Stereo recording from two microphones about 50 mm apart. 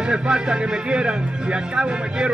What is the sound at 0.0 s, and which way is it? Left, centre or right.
Music, centre.